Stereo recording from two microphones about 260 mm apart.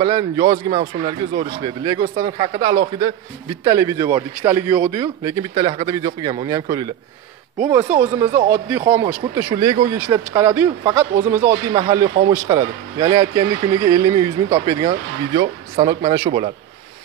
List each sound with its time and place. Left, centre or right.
0.0 s a man's voice: centre
8.0 s a man's voice: centre